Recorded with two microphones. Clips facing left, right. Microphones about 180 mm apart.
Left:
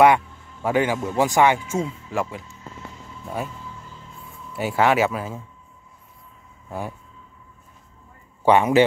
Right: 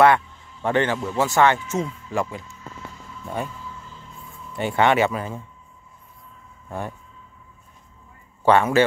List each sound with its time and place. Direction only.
0.0 s a man's voice: 10° left (ahead or behind)
4.3 s speech: 5° left (ahead or behind)
6.7 s speech: 5° left (ahead or behind)
8.4 s a man's voice: 15° left (ahead or behind)